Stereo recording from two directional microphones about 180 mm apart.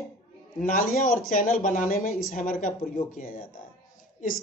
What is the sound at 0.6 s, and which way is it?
Speech, 50° left (ahead or behind).